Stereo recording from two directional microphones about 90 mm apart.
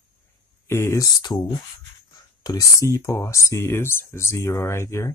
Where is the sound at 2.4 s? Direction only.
45° left (ahead or behind).